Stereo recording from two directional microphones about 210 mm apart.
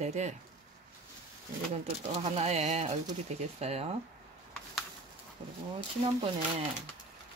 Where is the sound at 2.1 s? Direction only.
30° right (ahead or behind).